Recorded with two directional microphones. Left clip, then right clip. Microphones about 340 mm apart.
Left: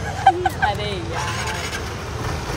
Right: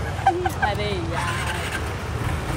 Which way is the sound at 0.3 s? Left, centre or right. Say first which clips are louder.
Left 5 dB; left.